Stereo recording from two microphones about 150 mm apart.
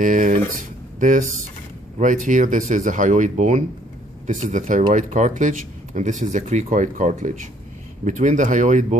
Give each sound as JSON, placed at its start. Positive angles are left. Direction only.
{"t": 0.0, "sound": "speech", "side_deg": -60}